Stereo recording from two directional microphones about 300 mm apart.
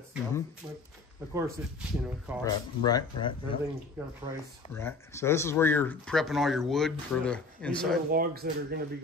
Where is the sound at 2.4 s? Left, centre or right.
Centre.